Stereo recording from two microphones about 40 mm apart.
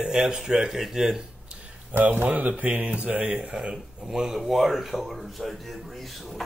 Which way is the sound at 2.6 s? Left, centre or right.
Right.